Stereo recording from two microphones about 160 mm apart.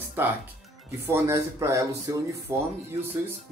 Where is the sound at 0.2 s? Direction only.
15° right (ahead or behind).